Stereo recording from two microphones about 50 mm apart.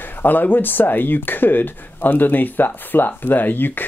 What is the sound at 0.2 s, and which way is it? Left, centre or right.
Speech, left.